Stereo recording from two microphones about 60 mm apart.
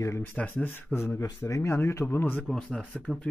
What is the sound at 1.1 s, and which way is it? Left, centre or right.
Speech, left.